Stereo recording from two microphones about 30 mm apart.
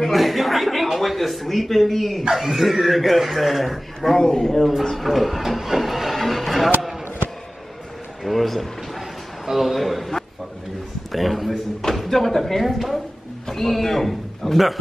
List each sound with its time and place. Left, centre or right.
0.1 s a sound: centre
0.9 s speech: centre
2.4 s a man's voice: centre
4.2 s a man's voice: left
4.5 s a man's voice: centre
5.4 s printer: centre
6.1 s vehicle: centre
8.2 s a man's voice: centre
9.5 s a man's voice: centre
11.1 s a man's voice: centre